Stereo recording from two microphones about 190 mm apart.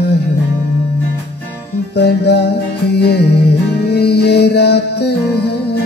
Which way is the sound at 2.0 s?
60° left (ahead or behind).